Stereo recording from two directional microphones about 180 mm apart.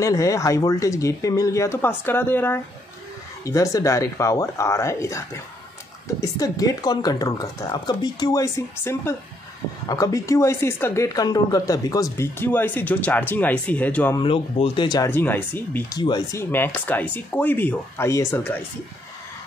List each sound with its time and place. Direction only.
0.0 s speech: 20° left (ahead or behind)
14.1 s speech: 30° left (ahead or behind)
15.0 s speech: 10° left (ahead or behind)
16.0 s speech: 20° left (ahead or behind)